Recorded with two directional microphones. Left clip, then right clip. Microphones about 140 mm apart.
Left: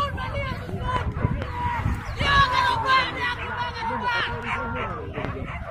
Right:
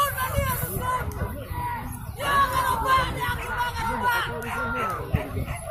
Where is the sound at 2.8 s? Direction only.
65° right (ahead or behind); by 5.2 s 90° right.